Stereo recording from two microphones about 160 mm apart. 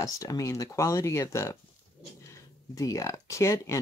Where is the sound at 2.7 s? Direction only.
20° left (ahead or behind).